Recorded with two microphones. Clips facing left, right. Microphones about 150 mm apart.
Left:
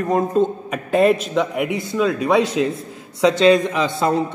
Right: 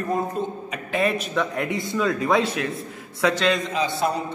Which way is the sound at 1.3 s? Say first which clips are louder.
Left 4 dB; 15° left (ahead or behind).